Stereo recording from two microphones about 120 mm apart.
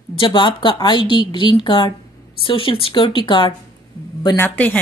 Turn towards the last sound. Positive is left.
turn(degrees=15)  # may be behind; listen again after turning